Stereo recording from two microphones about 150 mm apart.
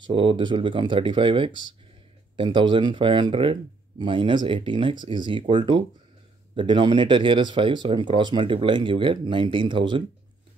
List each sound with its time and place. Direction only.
0.1 s speech: 35° right (ahead or behind)